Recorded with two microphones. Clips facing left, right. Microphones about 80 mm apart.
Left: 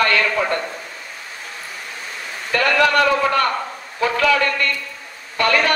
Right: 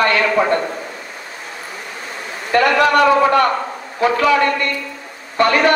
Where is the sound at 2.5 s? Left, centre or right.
Right.